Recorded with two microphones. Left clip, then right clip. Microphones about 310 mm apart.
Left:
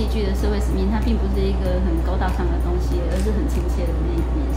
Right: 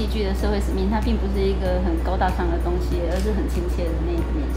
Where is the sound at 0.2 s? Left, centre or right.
Right.